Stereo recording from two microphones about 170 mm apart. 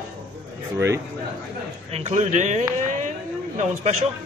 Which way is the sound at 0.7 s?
15° right (ahead or behind).